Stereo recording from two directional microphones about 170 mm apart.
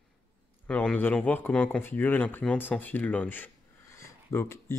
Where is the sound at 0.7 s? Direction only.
10° left (ahead or behind).